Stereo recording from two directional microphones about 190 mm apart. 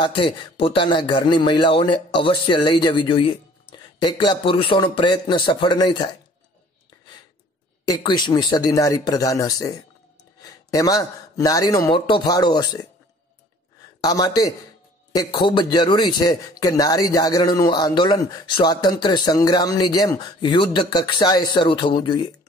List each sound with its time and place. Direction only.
0.0 s a man's voice: 25° left (ahead or behind)
7.8 s a man's voice: 20° left (ahead or behind)
14.0 s a man's voice: 20° left (ahead or behind)